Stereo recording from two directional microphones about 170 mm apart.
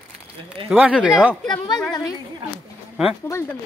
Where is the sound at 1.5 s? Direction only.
25° left (ahead or behind).